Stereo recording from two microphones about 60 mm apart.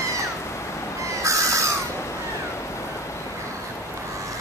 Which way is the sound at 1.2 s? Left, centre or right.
Right.